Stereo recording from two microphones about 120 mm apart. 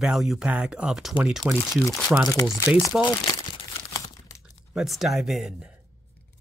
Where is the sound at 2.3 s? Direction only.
25° left (ahead or behind).